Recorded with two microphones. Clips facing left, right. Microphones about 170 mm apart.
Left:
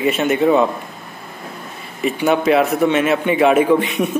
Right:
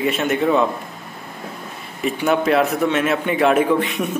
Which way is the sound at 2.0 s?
Centre (ahead or behind).